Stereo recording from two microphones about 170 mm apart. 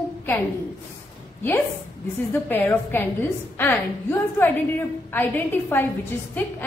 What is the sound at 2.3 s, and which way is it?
A woman's voice, 10° left (ahead or behind).